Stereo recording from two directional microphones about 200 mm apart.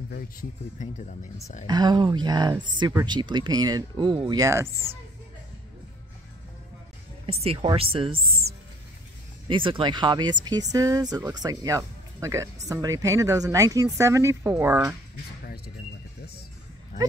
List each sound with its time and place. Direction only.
0.1 s speech: 40° left (ahead or behind)
1.7 s speech: 20° right (ahead or behind)
7.2 s speech: 30° right (ahead or behind)
8.4 s music: centre (ahead or behind)
9.5 s speech: 25° right (ahead or behind)
15.4 s a sound: 50° left (ahead or behind)